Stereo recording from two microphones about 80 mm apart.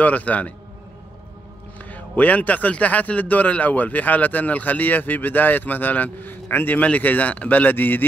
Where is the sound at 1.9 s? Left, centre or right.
Centre.